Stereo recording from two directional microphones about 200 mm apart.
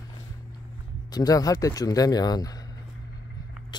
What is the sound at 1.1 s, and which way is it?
Speech, 20° left (ahead or behind).